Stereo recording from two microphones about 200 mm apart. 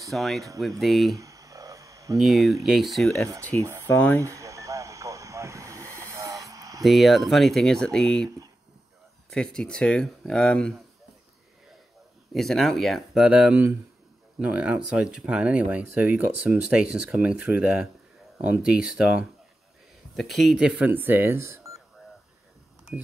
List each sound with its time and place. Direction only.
0.1 s speech: centre (ahead or behind)
1.1 s a sound: 15° right (ahead or behind)
2.1 s speech: centre (ahead or behind)
3.3 s speech: 15° right (ahead or behind)
3.8 s speech: 10° left (ahead or behind)
4.2 s radio: 15° right (ahead or behind)
5.9 s a sound: 15° right (ahead or behind)
6.8 s speech: centre (ahead or behind)
9.3 s speech: 5° left (ahead or behind)
12.3 s speech: centre (ahead or behind); by 21.8 s 15° right (ahead or behind)